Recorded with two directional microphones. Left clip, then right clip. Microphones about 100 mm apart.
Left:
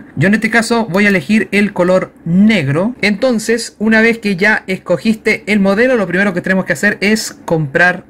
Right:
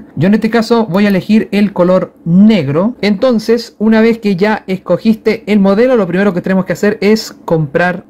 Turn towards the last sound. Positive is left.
turn(degrees=-15)  # may be behind; listen again after turning